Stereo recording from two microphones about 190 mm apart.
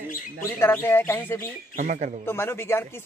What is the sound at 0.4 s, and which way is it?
Speech, 10° left (ahead or behind).